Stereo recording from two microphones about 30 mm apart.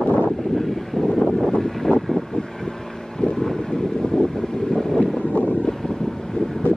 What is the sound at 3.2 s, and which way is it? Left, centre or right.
Boat, centre.